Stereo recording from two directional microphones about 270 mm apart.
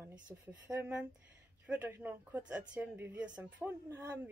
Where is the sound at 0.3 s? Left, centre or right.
Centre.